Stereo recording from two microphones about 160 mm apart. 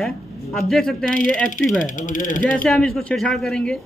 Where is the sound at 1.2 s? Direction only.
55° left (ahead or behind).